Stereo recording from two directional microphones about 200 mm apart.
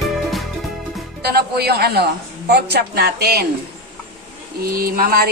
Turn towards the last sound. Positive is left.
turn(degrees=-50)  # may be behind; listen again after turning